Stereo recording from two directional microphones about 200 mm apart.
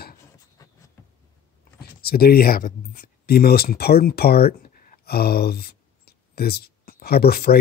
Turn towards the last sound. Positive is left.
turn(degrees=50)  # may be behind; listen again after turning